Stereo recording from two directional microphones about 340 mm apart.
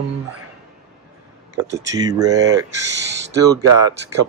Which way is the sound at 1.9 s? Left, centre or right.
Centre.